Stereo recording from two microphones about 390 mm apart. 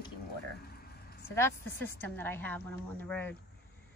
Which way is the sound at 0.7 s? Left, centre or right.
Left.